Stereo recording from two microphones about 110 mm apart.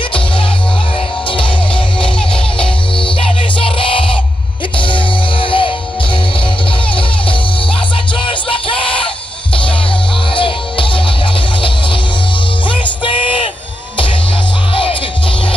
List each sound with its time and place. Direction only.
2.6 s music: 50° left (ahead or behind)
8.2 s music: 50° left (ahead or behind)
10.3 s music: 50° left (ahead or behind)
12.6 s music: 50° left (ahead or behind)
14.7 s music: 55° left (ahead or behind)